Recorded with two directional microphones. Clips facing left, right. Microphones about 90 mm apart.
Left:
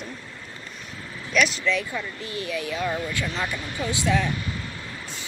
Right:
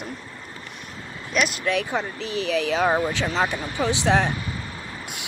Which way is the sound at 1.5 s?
55° right (ahead or behind).